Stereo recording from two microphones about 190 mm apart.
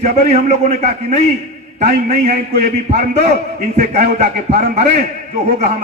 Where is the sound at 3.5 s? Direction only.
40° right (ahead or behind).